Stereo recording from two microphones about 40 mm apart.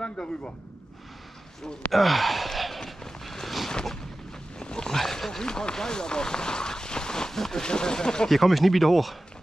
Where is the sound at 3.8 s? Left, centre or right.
Centre.